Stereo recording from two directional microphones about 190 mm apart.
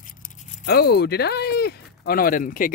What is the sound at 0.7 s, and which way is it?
Speech, 55° left (ahead or behind).